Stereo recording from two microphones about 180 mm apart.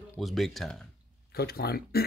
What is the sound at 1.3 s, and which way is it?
Speech, 60° left (ahead or behind).